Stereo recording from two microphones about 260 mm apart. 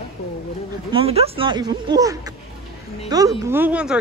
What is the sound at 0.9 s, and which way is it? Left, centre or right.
Speech, right.